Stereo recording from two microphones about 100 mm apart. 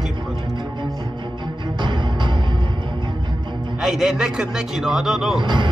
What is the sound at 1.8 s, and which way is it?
Music, 50° right (ahead or behind).